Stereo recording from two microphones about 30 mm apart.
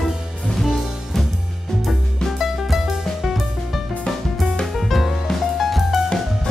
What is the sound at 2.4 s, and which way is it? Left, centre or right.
Music, centre.